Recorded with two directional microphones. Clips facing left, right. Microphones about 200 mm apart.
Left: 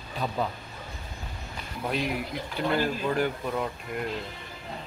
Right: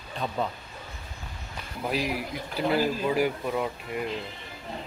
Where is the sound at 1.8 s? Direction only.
5° right (ahead or behind).